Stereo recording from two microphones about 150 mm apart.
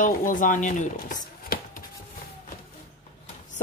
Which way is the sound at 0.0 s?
65° left (ahead or behind).